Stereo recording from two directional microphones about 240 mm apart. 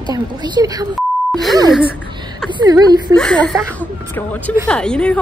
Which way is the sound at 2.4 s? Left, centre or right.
Centre.